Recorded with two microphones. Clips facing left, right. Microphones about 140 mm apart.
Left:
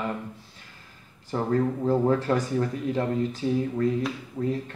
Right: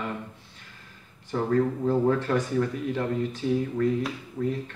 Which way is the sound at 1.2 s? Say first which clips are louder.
Right 1 dB; 30° left (ahead or behind).